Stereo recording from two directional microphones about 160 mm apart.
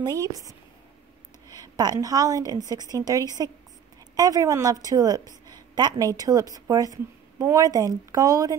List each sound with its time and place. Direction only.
0.0 s a woman's voice: 25° right (ahead or behind)
1.5 s a woman's voice: 25° right (ahead or behind)